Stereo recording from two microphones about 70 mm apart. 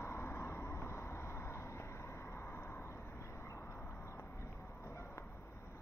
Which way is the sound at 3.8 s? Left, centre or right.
Left.